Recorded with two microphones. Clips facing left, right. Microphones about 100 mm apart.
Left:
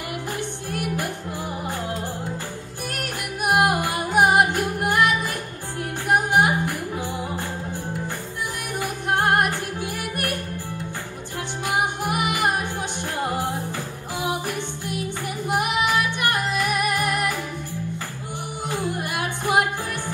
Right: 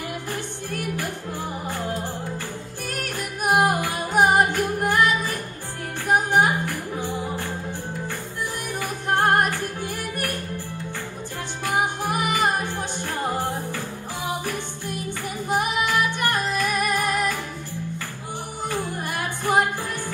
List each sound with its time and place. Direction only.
2.9 s music: 15° left (ahead or behind)
6.1 s music: 15° left (ahead or behind)
8.7 s music: 15° left (ahead or behind)
11.6 s music: 15° left (ahead or behind)
15.4 s music: 15° left (ahead or behind)
18.7 s music: 15° left (ahead or behind)